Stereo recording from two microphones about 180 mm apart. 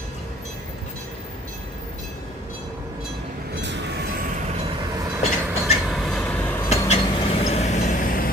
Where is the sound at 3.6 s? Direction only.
75° right (ahead or behind).